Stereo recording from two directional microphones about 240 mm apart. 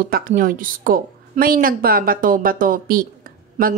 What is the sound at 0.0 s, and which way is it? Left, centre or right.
A woman's voice, right.